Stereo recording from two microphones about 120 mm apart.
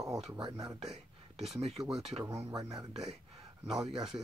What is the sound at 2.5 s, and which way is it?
Speech, 30° right (ahead or behind).